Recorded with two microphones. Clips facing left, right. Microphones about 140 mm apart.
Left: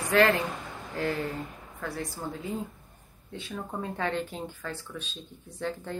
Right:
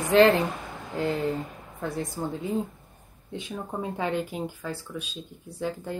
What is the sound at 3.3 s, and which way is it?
Speech, 15° right (ahead or behind).